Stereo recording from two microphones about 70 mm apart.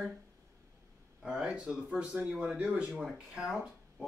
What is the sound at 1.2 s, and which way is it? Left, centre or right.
Speech, centre.